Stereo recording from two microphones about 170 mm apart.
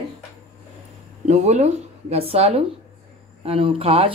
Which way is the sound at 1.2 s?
40° right (ahead or behind).